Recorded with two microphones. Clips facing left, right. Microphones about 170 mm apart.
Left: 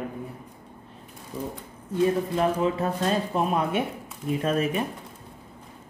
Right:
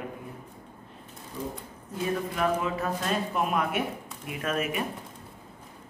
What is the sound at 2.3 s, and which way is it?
Speech, 30° left (ahead or behind).